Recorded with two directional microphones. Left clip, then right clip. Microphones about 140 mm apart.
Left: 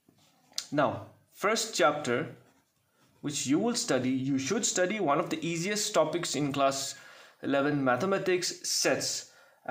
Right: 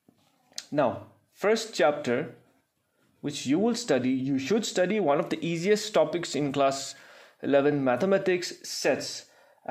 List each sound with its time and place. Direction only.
0.6 s speech: 20° right (ahead or behind)